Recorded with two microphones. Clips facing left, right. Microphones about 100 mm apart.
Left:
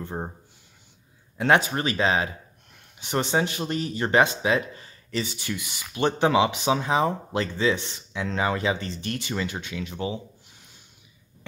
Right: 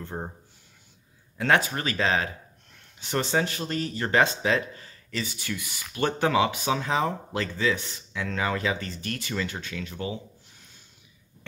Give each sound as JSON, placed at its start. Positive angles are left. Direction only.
{"t": 0.0, "sound": "speech", "side_deg": 15}
{"t": 1.4, "sound": "speech", "side_deg": 20}